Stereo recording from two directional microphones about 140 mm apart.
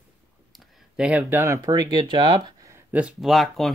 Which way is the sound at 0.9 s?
5° right (ahead or behind).